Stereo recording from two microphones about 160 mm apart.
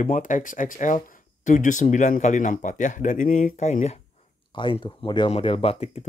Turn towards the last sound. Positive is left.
turn(degrees=35)  # may be behind; listen again after turning